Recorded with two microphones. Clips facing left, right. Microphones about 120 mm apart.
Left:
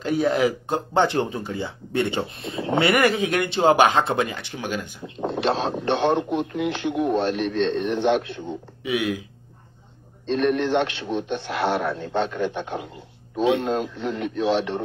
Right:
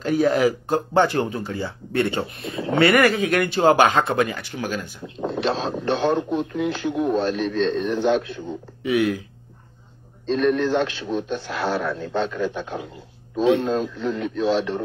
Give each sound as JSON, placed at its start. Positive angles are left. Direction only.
{"t": 0.0, "sound": "speech", "side_deg": 15}
{"t": 8.8, "sound": "speech", "side_deg": 15}
{"t": 10.3, "sound": "speech", "side_deg": 25}